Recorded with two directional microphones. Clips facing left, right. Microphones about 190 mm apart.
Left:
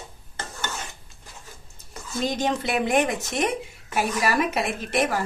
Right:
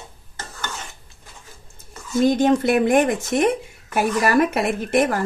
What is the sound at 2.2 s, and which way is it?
A woman's voice, 55° right (ahead or behind).